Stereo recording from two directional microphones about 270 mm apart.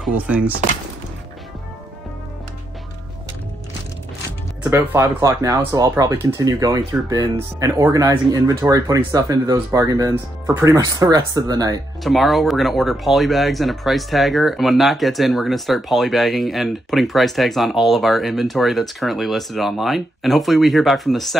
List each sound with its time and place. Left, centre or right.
0.0 s speech: centre
4.6 s speech: centre
12.0 s speech: centre